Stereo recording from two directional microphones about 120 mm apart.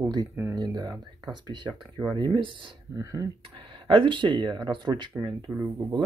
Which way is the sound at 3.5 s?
45° right (ahead or behind).